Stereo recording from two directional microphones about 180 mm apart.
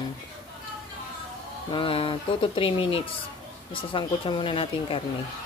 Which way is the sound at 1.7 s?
30° left (ahead or behind).